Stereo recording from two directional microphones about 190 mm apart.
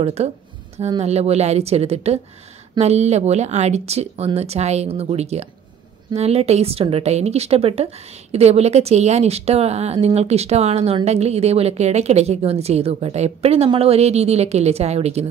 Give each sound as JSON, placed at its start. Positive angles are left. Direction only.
{"t": 0.0, "sound": "a woman's voice", "side_deg": -35}